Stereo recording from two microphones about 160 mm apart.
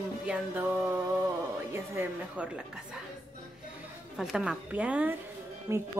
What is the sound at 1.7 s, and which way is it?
Speech, 15° right (ahead or behind).